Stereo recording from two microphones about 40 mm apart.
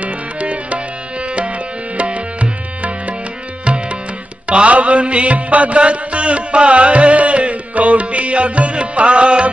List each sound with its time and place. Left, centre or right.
0.0 s music: right
3.6 s tabla: right
4.5 s music: right